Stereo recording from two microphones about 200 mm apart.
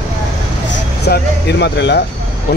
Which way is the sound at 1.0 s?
55° left (ahead or behind).